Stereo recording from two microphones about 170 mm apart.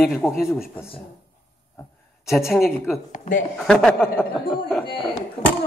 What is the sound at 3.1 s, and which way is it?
Speech, 50° left (ahead or behind).